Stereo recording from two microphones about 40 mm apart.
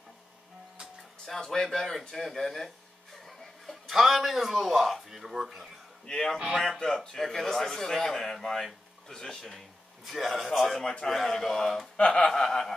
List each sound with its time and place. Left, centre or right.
1.2 s speech: centre
3.3 s chuckle: centre
5.1 s speech: centre
6.0 s speech: centre
6.3 s speech: centre
6.8 s speech: centre
10.0 s speech: centre
10.8 s speech: centre
11.1 s speech: centre
12.0 s speech: left
12.4 s speech: centre